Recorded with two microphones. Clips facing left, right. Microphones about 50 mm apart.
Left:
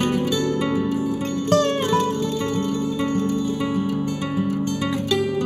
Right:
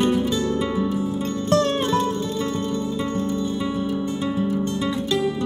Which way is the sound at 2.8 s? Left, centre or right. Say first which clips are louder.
Left 2 dB; left.